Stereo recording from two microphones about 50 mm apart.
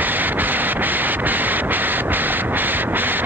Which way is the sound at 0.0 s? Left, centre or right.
Right.